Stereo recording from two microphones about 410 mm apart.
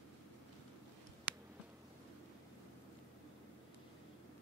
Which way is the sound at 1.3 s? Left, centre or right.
Centre.